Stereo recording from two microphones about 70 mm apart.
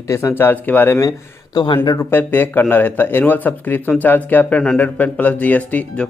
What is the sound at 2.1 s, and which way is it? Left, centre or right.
Speech, left.